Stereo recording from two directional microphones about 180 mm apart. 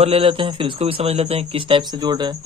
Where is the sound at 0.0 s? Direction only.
30° right (ahead or behind).